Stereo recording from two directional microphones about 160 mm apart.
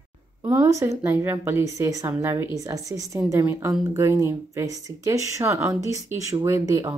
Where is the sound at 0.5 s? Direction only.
15° right (ahead or behind).